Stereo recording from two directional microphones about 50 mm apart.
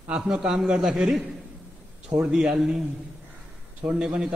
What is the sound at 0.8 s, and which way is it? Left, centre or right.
Speech, centre.